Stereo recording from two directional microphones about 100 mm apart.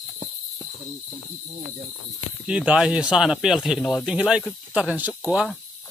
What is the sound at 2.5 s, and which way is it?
Speech, 10° right (ahead or behind).